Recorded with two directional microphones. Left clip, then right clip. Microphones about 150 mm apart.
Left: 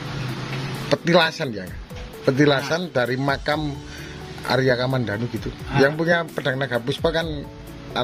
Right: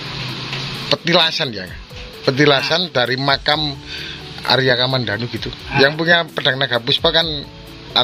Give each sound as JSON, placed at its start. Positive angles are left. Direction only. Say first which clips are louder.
{"t": 0.8, "sound": "speech", "louder": "right 3 dB", "side_deg": 20}
{"t": 1.1, "sound": "speech", "louder": "right 3 dB", "side_deg": 5}